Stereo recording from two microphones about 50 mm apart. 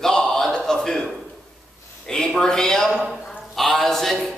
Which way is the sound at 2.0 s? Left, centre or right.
Centre.